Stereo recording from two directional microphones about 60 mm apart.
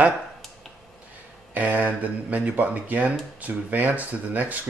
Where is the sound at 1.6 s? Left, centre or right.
Right.